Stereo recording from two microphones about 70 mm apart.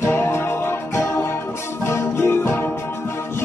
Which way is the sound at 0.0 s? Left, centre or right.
Left.